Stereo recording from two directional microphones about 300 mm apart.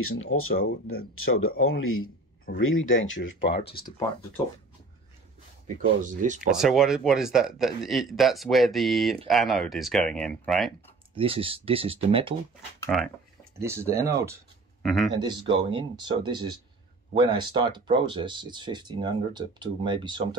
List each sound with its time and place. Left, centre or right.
0.0 s speech: left
5.8 s speech: right
6.5 s speech: centre
11.1 s speech: centre
12.8 s speech: centre
13.6 s speech: centre
15.1 s speech: centre